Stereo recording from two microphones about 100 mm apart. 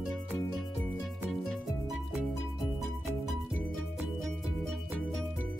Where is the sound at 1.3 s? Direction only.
Centre (ahead or behind).